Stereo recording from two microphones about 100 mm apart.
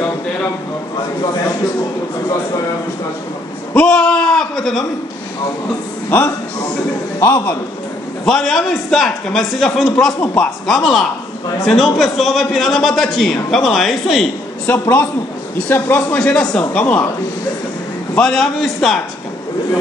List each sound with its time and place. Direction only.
3.7 s a sound: 5° left (ahead or behind)
7.2 s a man's voice: 20° left (ahead or behind)
8.3 s a man's voice: 5° left (ahead or behind)
14.7 s speech: 15° left (ahead or behind)
16.2 s speech: 5° left (ahead or behind)
18.1 s a man's voice: 5° left (ahead or behind)